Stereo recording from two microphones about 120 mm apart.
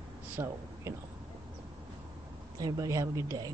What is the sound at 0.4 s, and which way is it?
Speech, 20° right (ahead or behind).